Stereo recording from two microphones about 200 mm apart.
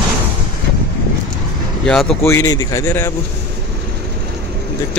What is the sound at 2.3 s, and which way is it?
Speech, 15° left (ahead or behind).